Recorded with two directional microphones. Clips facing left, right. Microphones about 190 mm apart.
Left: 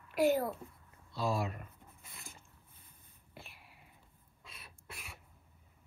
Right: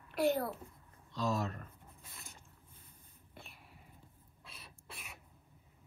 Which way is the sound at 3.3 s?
Centre (ahead or behind).